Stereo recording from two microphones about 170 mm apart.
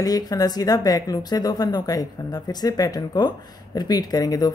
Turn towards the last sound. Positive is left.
turn(degrees=25)  # may be behind; listen again after turning